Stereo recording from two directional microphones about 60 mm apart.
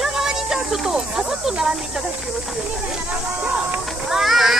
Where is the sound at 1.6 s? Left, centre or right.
Centre.